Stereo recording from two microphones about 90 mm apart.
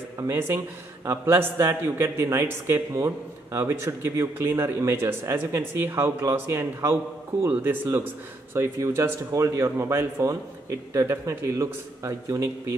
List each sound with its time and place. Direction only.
0.3 s a man's voice: 25° right (ahead or behind)
8.5 s speech: 30° right (ahead or behind)